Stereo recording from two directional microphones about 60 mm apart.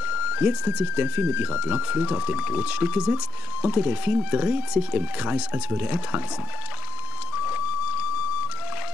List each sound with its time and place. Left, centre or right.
0.0 s speech: centre